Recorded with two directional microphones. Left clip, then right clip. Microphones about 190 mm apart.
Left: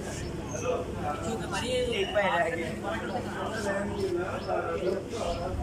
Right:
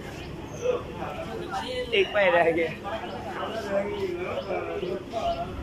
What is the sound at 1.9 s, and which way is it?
Speech, 15° right (ahead or behind).